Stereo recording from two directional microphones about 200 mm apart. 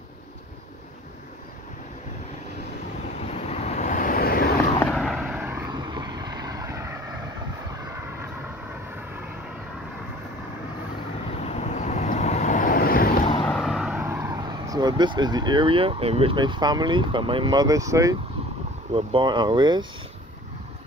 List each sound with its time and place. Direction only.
3.3 s vehicle: 30° left (ahead or behind); by 4.6 s 50° left (ahead or behind)
4.9 s vehicle: centre (ahead or behind)
11.4 s vehicle: 35° left (ahead or behind)
13.5 s a sound: centre (ahead or behind)
14.0 s speech: 15° right (ahead or behind)